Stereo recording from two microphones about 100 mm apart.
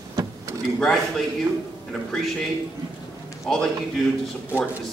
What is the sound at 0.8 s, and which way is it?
Speech, 5° left (ahead or behind).